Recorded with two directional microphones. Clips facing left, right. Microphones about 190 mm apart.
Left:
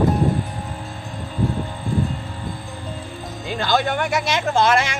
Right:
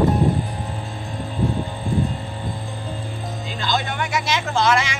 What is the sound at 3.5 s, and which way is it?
Music, 55° left (ahead or behind).